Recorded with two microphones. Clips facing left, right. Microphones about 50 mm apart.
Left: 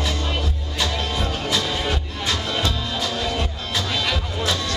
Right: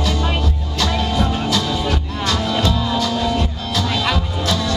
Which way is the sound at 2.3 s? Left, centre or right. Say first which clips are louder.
Right 7 dB; centre.